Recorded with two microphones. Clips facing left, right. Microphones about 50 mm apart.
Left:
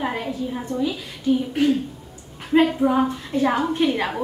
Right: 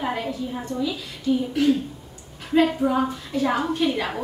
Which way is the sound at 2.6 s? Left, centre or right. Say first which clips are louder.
Left 2 dB; centre.